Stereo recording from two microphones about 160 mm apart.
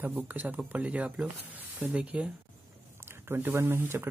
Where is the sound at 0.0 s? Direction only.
10° right (ahead or behind).